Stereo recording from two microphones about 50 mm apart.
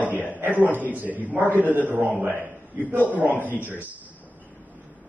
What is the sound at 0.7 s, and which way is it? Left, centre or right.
Speech, left.